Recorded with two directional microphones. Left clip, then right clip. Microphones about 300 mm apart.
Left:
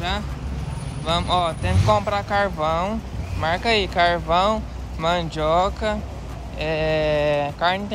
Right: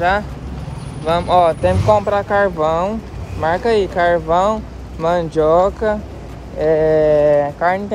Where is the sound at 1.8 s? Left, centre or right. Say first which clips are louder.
Right 4 dB; centre.